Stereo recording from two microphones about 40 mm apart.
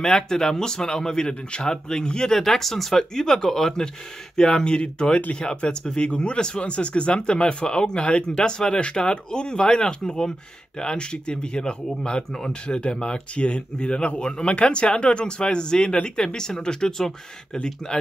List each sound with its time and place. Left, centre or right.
0.0 s speech: centre